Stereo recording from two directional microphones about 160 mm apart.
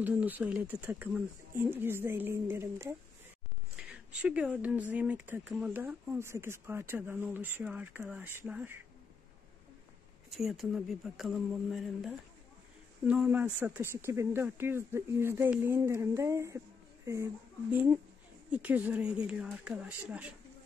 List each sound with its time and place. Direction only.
0.0 s speech: 10° right (ahead or behind)
10.3 s speech: centre (ahead or behind)